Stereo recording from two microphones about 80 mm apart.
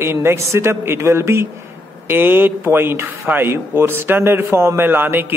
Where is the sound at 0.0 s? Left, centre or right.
Right.